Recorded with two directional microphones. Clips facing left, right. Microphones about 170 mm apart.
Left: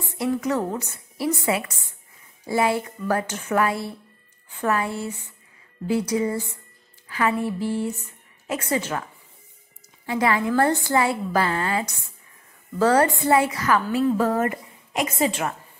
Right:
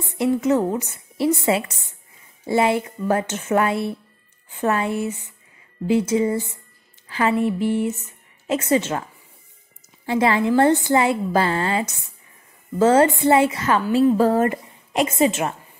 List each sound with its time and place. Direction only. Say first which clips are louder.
0.0 s a woman's voice: right 4 dB; 20° right (ahead or behind)
10.0 s a woman's voice: right 3 dB; 25° right (ahead or behind)